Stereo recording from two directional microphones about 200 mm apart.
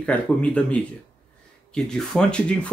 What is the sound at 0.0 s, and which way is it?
Speech, 5° left (ahead or behind).